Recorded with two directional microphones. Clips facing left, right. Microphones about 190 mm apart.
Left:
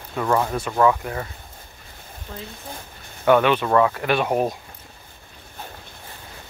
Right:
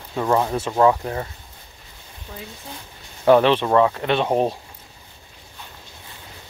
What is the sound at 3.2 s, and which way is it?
Speech, 30° right (ahead or behind).